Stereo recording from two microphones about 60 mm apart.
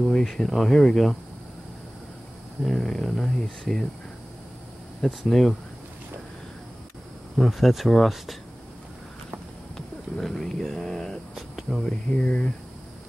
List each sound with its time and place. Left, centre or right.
0.0 s speech: centre
2.6 s speech: centre
5.0 s speech: centre
7.3 s speech: centre
9.8 s speech: centre
11.3 s a sound: centre
11.8 s speech: centre